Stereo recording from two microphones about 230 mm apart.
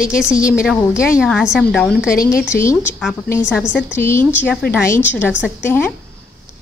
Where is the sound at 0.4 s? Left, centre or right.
Left.